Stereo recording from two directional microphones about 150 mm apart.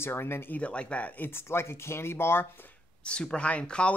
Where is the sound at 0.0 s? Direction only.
15° left (ahead or behind).